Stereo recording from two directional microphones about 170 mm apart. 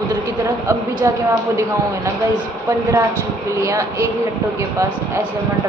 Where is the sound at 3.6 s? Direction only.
20° right (ahead or behind).